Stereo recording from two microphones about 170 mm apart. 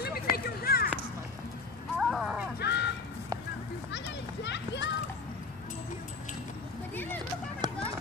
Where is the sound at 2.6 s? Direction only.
90° left.